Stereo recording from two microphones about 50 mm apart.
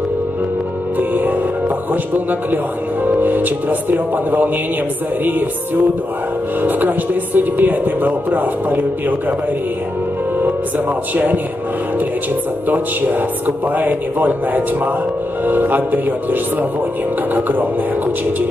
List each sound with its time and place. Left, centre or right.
0.9 s music: right
3.1 s speech: right
6.6 s speech: right
12.6 s speech: right